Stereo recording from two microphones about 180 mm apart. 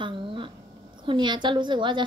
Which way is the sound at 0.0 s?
30° right (ahead or behind).